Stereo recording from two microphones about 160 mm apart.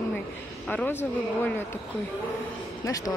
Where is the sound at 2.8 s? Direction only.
20° left (ahead or behind).